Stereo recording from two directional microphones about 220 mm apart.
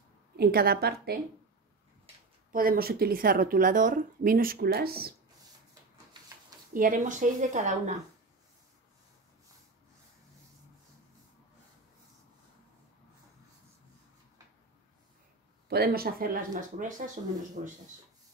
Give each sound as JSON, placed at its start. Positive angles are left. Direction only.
{"t": 0.4, "sound": "a woman's voice", "side_deg": -45}
{"t": 2.5, "sound": "speech", "side_deg": -40}
{"t": 6.7, "sound": "speech", "side_deg": -40}
{"t": 15.7, "sound": "speech", "side_deg": -45}